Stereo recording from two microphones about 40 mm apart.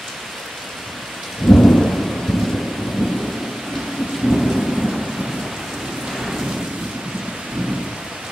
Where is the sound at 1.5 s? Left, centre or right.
Centre.